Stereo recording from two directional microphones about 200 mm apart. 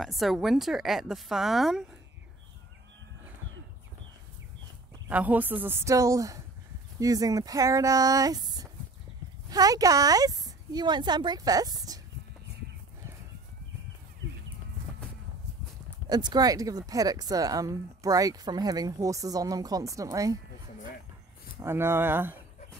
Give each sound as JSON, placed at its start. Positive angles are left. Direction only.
{"t": 0.0, "sound": "speech", "side_deg": 0}
{"t": 5.0, "sound": "speech", "side_deg": -10}
{"t": 16.1, "sound": "speech", "side_deg": -20}
{"t": 21.5, "sound": "speech", "side_deg": -10}